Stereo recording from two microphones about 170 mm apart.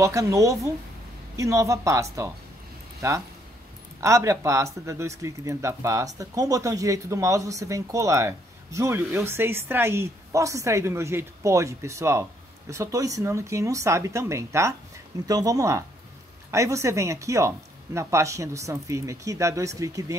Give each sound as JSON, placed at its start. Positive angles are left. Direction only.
{"t": 0.0, "sound": "speech", "side_deg": -20}
{"t": 4.0, "sound": "speech", "side_deg": -15}